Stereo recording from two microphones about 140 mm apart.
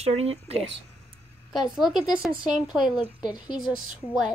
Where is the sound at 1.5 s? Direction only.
Centre (ahead or behind).